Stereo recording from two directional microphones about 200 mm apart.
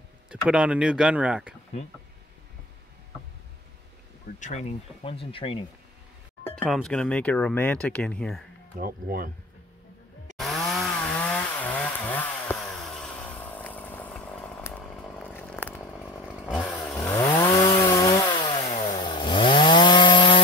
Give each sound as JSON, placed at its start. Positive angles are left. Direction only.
{"t": 0.3, "sound": "speech", "side_deg": -5}
{"t": 4.4, "sound": "speech", "side_deg": 35}
{"t": 6.6, "sound": "speech", "side_deg": 0}
{"t": 8.7, "sound": "speech", "side_deg": -45}
{"t": 10.3, "sound": "chainsaw", "side_deg": 0}
{"t": 17.0, "sound": "chainsaw", "side_deg": 20}